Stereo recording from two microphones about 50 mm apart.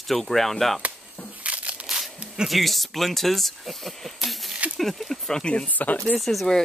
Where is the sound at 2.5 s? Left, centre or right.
Centre.